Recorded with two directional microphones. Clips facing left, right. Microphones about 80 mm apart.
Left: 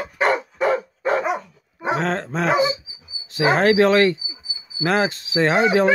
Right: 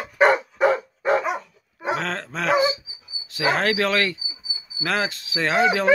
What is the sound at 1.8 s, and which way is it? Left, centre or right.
Speech, left.